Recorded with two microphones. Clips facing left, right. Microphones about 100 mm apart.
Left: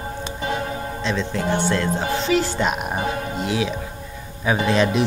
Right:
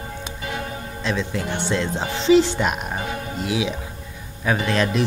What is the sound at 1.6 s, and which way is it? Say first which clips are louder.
Music: left 2 dB; 20° right (ahead or behind).